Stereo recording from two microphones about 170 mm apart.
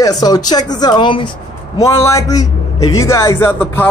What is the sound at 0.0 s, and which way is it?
Speech, 20° left (ahead or behind).